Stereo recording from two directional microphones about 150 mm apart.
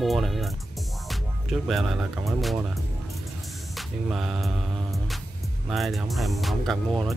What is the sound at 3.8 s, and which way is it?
Music, centre (ahead or behind).